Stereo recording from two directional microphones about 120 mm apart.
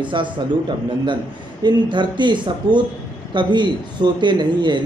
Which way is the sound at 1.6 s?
40° right (ahead or behind).